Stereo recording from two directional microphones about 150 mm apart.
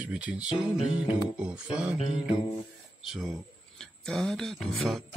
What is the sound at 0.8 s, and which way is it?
Music, 35° left (ahead or behind).